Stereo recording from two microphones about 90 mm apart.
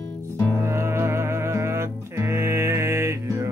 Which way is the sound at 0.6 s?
30° right (ahead or behind).